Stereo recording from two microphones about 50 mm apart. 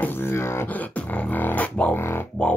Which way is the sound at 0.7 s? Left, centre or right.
Left.